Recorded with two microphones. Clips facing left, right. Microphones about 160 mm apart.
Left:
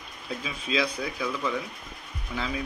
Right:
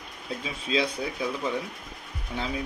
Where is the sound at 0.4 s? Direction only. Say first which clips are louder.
Right 1 dB; 30° right (ahead or behind).